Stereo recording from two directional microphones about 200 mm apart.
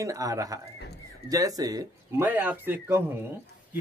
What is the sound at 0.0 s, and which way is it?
A man's voice, 15° right (ahead or behind).